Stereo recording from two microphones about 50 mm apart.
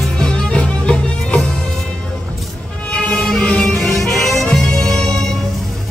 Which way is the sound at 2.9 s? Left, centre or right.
Centre.